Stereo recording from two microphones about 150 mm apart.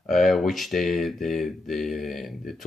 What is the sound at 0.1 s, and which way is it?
Speech, centre (ahead or behind).